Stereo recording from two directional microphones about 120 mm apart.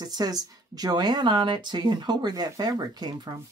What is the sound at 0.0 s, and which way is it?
Speech, 35° right (ahead or behind).